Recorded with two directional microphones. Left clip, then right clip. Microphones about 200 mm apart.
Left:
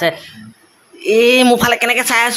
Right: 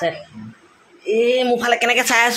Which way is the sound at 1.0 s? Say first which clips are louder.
Left 6 dB; 35° left (ahead or behind).